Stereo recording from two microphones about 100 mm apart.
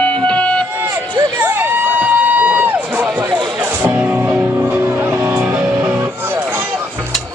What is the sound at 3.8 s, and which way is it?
Music, 20° right (ahead or behind).